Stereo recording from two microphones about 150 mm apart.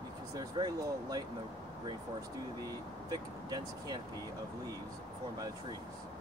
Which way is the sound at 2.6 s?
25° right (ahead or behind).